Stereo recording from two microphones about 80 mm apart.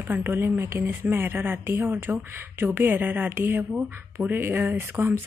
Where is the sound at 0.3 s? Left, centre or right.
Right.